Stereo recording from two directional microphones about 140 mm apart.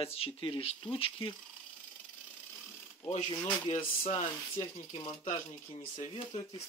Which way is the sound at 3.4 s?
45° left (ahead or behind).